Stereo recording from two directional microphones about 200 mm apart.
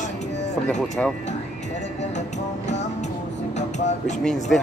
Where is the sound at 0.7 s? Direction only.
5° left (ahead or behind).